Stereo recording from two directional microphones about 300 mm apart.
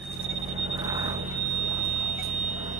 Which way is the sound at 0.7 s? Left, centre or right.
Centre.